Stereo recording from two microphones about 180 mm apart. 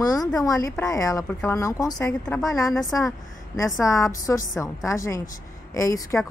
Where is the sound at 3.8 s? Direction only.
20° left (ahead or behind).